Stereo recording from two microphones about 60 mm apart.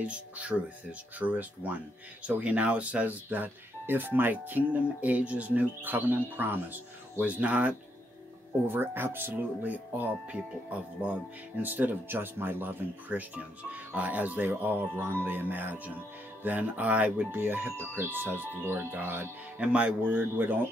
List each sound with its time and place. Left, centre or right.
0.0 s speech: right
19.6 s speech: right